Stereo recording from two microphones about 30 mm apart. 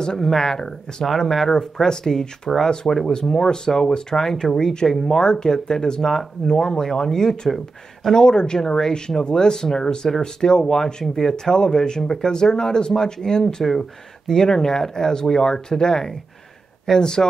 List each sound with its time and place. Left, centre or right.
0.0 s speech: centre
1.3 s speech: centre
7.4 s speech: centre
8.1 s speech: left
8.6 s speech: centre